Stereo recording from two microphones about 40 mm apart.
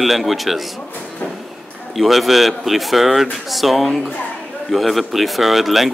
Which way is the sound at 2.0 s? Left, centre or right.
Centre.